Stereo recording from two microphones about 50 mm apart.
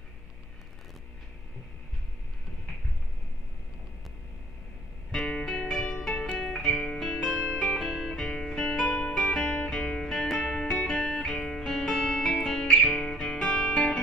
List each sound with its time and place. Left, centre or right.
5.4 s music: centre
7.3 s music: left
7.8 s music: centre
8.8 s music: left
9.3 s music: centre
10.1 s music: centre